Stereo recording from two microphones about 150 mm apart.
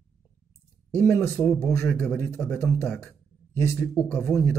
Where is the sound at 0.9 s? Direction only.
15° left (ahead or behind).